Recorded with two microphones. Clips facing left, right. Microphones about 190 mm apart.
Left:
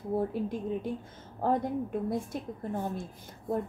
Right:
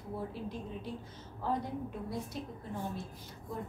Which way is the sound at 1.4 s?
50° left (ahead or behind).